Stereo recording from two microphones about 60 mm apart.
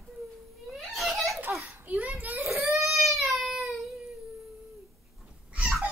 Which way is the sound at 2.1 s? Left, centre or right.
Right.